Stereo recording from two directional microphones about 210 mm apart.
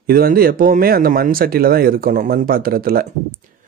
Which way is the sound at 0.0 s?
45° right (ahead or behind).